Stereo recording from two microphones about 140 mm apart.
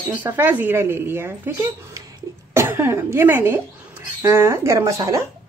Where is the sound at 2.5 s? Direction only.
15° right (ahead or behind).